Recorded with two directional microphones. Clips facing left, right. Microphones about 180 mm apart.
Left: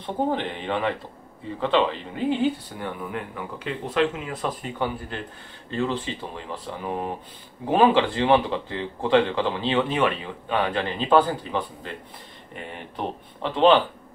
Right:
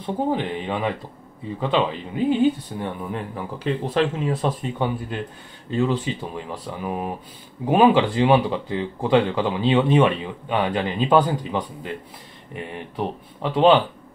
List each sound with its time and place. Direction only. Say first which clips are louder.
0.0 s speech: right 2 dB; 10° right (ahead or behind)
2.8 s speech: right 1 dB; 30° right (ahead or behind); by 11.9 s 15° right (ahead or behind)
12.9 s speech: right 3 dB; 10° right (ahead or behind)